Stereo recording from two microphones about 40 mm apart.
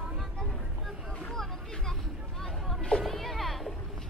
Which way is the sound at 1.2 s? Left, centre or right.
Centre.